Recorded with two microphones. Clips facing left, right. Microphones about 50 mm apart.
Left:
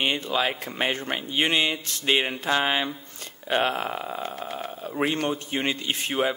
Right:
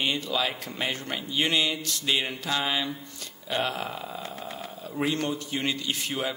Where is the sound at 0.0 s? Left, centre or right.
Left.